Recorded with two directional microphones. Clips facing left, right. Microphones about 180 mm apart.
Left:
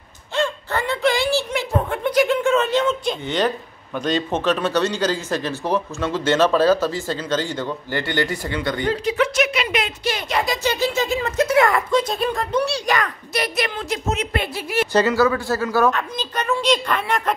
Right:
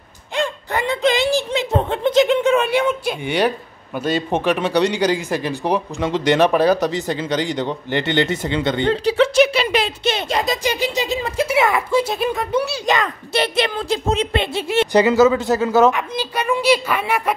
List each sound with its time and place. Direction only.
0.4 s speech: 15° right (ahead or behind)
12.8 s speech: 25° right (ahead or behind)